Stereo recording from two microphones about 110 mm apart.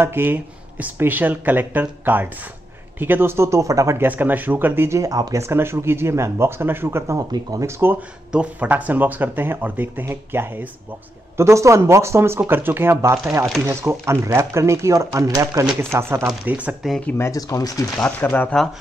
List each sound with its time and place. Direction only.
0.0 s speech: 20° right (ahead or behind)
4.1 s speech: 15° right (ahead or behind)
8.3 s speech: 10° right (ahead or behind)
16.4 s speech: 15° right (ahead or behind)
17.2 s speech: 30° left (ahead or behind)
17.9 s speech: 20° left (ahead or behind)